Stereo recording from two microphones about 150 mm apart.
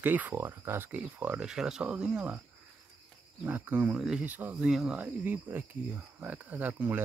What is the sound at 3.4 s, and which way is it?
Speech, 10° right (ahead or behind).